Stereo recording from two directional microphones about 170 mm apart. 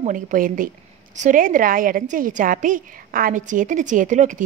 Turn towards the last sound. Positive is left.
turn(degrees=-45)  # may be behind; listen again after turning